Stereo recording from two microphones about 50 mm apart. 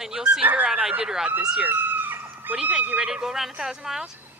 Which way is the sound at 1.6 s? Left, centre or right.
Right.